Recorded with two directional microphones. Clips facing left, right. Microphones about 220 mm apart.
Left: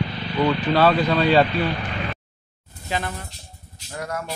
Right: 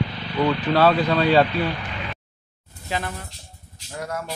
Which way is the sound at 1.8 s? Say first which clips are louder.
Left 4 dB; 50° left (ahead or behind).